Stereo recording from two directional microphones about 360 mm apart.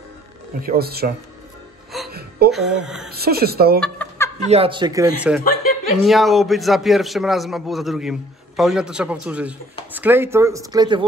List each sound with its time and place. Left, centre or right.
0.6 s a woman's voice: right
2.0 s a sound: right
2.5 s a man's voice: centre
3.1 s a woman's voice: right
3.8 s a sound: centre
4.5 s speech: centre
5.4 s speech: left
6.0 s a man's voice: centre